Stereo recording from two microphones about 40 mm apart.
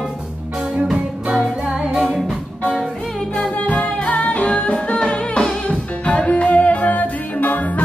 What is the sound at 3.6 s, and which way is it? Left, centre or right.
Music, left.